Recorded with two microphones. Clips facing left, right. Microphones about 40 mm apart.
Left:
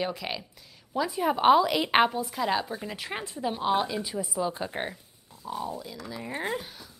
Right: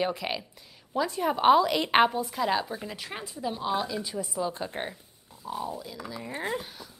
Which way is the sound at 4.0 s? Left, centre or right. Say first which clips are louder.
Left 1 dB; centre.